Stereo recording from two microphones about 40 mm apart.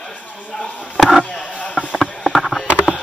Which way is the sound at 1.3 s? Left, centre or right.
Left.